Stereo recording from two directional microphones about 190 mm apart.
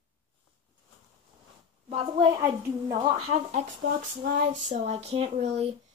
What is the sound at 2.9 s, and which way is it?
Speech, 35° right (ahead or behind).